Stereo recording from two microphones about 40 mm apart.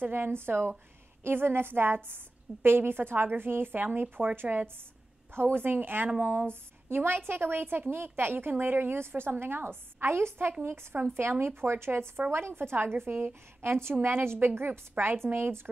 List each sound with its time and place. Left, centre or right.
0.0 s a woman's voice: right
1.2 s a woman's voice: right
5.3 s a woman's voice: right
6.5 s a woman's voice: right
9.3 s a woman's voice: right